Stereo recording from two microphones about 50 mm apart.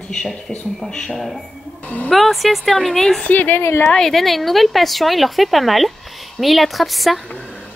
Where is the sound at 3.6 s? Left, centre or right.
Left.